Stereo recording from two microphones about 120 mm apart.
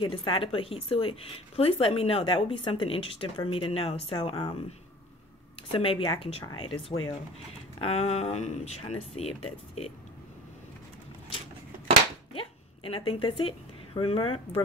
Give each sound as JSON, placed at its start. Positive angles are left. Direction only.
{"t": 0.0, "sound": "speech", "side_deg": 45}
{"t": 4.2, "sound": "speech", "side_deg": 40}
{"t": 5.6, "sound": "speech", "side_deg": 50}
{"t": 7.8, "sound": "speech", "side_deg": 60}
{"t": 12.4, "sound": "a woman's voice", "side_deg": 50}